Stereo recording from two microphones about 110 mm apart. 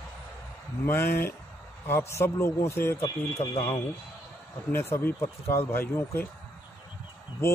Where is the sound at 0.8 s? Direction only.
20° left (ahead or behind).